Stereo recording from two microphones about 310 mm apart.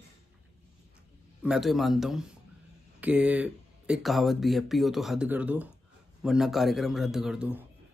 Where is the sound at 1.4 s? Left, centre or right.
Centre.